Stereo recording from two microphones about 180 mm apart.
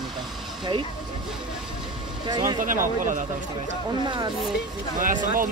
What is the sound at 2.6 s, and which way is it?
Speech, 50° right (ahead or behind).